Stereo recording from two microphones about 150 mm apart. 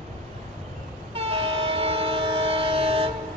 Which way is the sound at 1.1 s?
40° right (ahead or behind).